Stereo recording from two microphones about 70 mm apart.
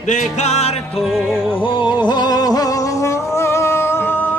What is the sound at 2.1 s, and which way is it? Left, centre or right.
Music, left.